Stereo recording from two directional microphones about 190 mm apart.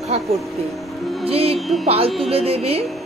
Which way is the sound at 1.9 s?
30° right (ahead or behind).